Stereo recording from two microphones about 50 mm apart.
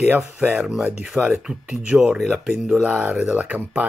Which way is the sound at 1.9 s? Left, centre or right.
Centre.